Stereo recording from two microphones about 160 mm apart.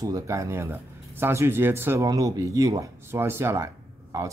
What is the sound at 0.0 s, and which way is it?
Speech, 20° right (ahead or behind).